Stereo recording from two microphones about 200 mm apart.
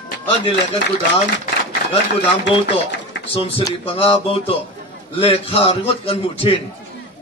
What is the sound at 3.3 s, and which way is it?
A man's voice, 25° left (ahead or behind).